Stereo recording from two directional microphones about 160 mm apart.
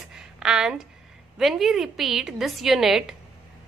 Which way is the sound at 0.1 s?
5° right (ahead or behind).